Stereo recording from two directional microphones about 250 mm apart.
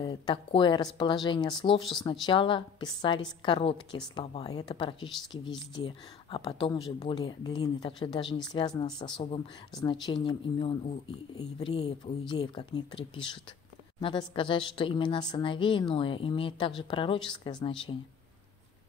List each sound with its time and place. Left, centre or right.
0.0 s speech: centre